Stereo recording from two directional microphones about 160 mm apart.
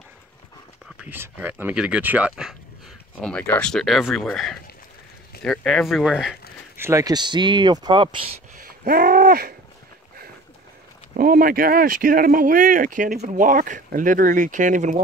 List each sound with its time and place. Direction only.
0.9 s speech: 10° right (ahead or behind)
3.2 s speech: 5° left (ahead or behind)
6.8 s speech: 20° right (ahead or behind)
8.5 s a sound: 70° right (ahead or behind)
11.1 s speech: 65° right (ahead or behind); by 15.0 s 50° right (ahead or behind)